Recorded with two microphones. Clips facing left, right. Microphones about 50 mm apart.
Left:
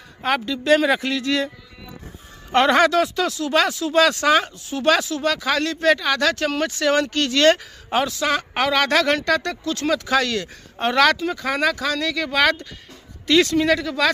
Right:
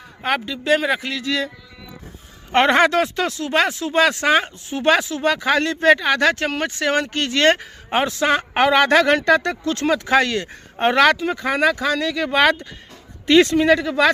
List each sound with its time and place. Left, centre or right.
0.2 s speech: centre
2.5 s speech: right